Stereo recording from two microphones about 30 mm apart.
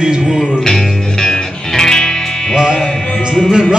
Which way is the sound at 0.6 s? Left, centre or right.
Centre.